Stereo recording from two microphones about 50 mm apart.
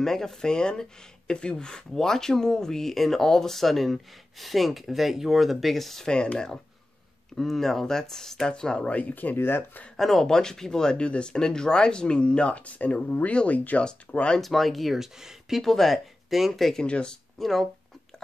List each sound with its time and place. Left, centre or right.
0.0 s speech: centre
9.1 s speech: left
9.9 s speech: centre
14.4 s speech: centre
15.6 s speech: centre
16.8 s speech: centre
17.4 s speech: centre